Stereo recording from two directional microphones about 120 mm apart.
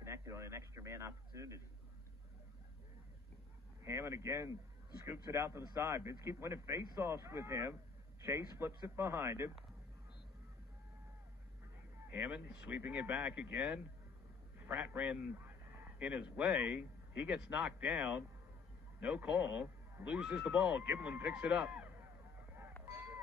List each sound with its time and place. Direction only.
0.0 s a man's voice: 25° right (ahead or behind)
3.8 s a man's voice: 25° right (ahead or behind)
12.1 s a man's voice: 15° right (ahead or behind)
22.9 s a sound: 20° right (ahead or behind)